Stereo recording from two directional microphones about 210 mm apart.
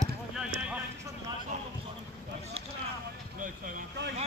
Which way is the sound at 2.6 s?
30° right (ahead or behind).